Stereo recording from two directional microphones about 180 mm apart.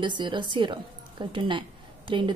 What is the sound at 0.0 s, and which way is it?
A woman's voice, 25° right (ahead or behind).